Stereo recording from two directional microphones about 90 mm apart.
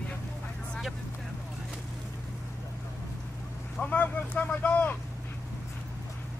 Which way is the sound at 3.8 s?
15° left (ahead or behind).